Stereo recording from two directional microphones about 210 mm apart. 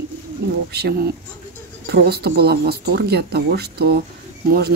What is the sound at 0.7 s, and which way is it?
Speech, 50° right (ahead or behind).